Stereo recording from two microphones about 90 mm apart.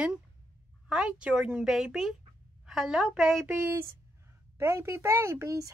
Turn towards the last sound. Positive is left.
turn(degrees=-35)  # may be behind; listen again after turning